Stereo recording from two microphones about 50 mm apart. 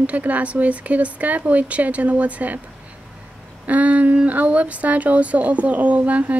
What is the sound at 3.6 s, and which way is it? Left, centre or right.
Speech, right.